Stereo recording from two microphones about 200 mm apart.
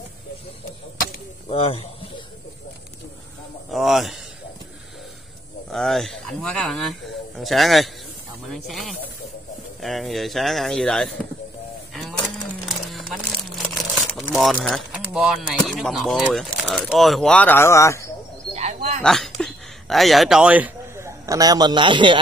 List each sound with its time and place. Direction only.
1.5 s speech: 30° left (ahead or behind)
3.7 s speech: centre (ahead or behind)
5.7 s speech: centre (ahead or behind)
12.8 s a sound: centre (ahead or behind)
13.9 s speech: centre (ahead or behind)
18.5 s a sound: 35° right (ahead or behind)
19.0 s speech: centre (ahead or behind); by 22.2 s 25° right (ahead or behind)